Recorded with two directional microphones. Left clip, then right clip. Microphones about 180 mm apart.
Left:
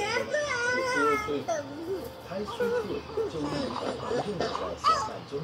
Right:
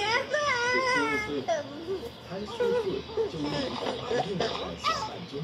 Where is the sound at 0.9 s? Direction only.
50° left (ahead or behind).